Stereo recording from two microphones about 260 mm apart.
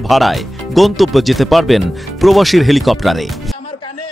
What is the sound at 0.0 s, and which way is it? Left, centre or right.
Speech, centre.